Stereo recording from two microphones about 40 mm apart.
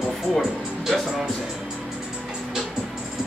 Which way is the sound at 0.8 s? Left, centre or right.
Centre.